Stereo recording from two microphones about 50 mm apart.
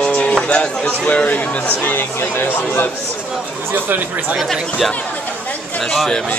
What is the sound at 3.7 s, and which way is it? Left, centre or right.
Speech, right.